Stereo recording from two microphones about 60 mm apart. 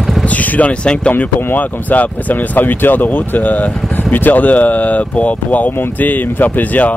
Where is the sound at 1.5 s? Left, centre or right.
Left.